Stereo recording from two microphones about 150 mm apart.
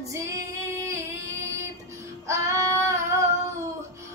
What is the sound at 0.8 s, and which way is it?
Singing, 20° right (ahead or behind).